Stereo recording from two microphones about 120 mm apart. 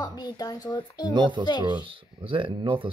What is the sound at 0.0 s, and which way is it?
Speech, 35° left (ahead or behind).